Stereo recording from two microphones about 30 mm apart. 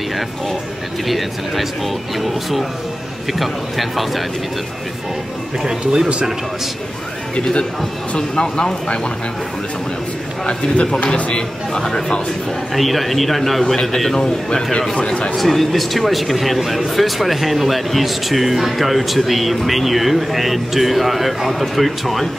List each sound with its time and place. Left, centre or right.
1.0 s speech: centre
5.6 s speech: centre
8.2 s speech: left
12.7 s speech: centre
13.7 s speech: centre
15.3 s speech: centre